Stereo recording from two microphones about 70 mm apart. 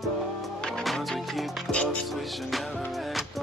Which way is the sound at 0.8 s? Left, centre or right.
Centre.